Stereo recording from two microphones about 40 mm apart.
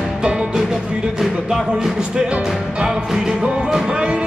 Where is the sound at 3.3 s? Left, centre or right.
Right.